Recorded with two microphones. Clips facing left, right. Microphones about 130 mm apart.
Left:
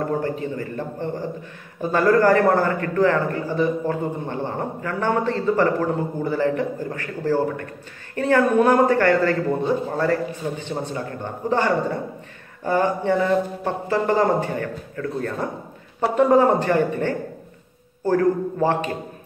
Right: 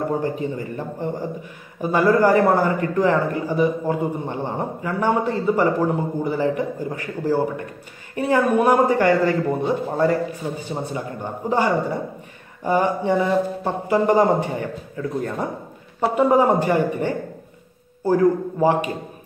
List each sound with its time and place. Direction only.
0.2 s a man's voice: 15° right (ahead or behind)
16.2 s a man's voice: 10° right (ahead or behind)